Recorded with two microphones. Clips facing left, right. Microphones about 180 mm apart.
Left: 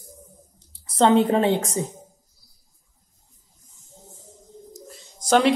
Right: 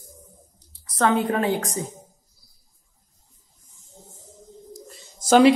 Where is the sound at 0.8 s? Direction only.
25° left (ahead or behind).